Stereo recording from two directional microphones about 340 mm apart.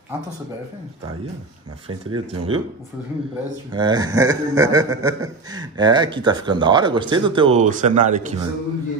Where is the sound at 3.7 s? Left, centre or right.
Centre.